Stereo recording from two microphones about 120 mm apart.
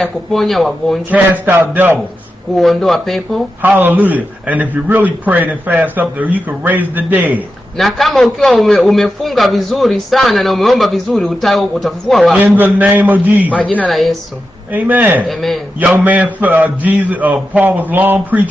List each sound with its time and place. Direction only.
0.0 s a man's voice: centre (ahead or behind)
1.1 s a man's voice: 15° right (ahead or behind)
2.5 s a man's voice: centre (ahead or behind)
3.6 s a man's voice: 15° right (ahead or behind)
7.7 s a man's voice: centre (ahead or behind)
12.4 s a man's voice: 15° right (ahead or behind)
13.5 s speech: 10° left (ahead or behind)
13.8 s a man's voice: centre (ahead or behind)
14.7 s a man's voice: 15° right (ahead or behind)
15.2 s a man's voice: centre (ahead or behind)
16.0 s a man's voice: 15° right (ahead or behind)